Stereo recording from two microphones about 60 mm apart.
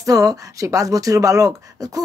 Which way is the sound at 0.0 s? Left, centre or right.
Right.